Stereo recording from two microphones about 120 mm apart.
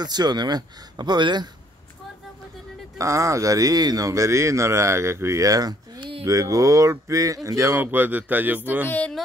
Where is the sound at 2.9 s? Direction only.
25° right (ahead or behind).